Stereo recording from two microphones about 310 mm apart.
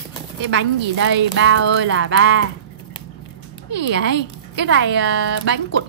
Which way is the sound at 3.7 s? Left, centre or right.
Right.